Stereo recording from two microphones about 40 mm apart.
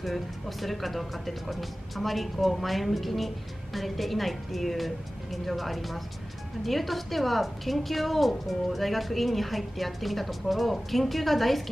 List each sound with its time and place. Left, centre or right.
0.0 s speech: centre